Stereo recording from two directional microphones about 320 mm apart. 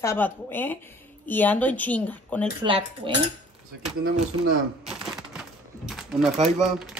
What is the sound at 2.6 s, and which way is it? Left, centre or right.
Dishes, centre.